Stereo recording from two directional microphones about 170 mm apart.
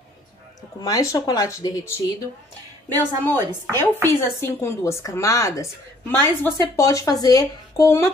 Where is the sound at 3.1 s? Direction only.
20° right (ahead or behind).